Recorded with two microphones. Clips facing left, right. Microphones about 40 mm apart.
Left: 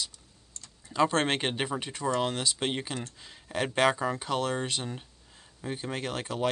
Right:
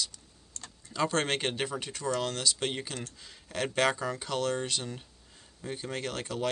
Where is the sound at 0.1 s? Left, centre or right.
Right.